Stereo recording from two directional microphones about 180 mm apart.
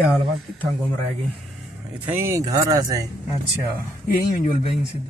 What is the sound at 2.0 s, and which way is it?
Speech, 15° right (ahead or behind).